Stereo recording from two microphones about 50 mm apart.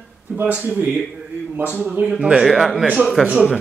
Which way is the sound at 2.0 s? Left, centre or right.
Right.